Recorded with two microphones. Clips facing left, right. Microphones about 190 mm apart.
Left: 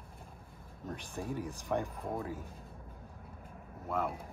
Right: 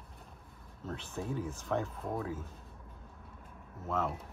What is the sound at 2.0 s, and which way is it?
Speech, centre (ahead or behind).